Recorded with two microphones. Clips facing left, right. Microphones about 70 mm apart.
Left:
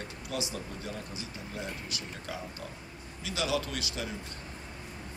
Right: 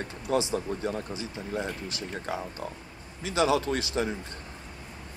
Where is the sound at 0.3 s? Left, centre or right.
Right.